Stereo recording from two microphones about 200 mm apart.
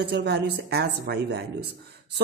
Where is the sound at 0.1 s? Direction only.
55° right (ahead or behind).